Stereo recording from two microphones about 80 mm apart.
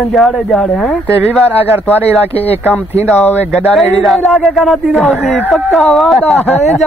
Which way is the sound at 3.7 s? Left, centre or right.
Centre.